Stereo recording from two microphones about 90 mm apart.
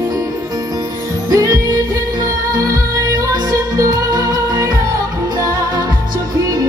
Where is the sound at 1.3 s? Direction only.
40° right (ahead or behind).